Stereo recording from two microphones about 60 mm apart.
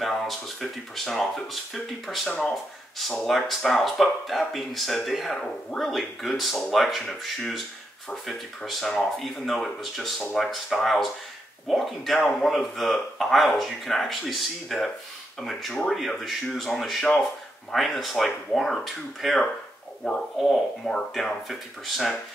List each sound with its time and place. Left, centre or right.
0.0 s speech: centre
2.2 s speech: centre
3.0 s speech: centre